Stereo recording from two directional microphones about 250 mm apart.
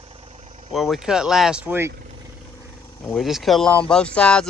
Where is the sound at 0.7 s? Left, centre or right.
Centre.